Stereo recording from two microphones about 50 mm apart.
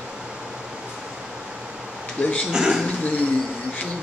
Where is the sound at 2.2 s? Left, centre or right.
Left.